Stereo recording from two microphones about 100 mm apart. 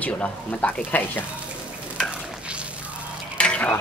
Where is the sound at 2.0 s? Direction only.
10° right (ahead or behind).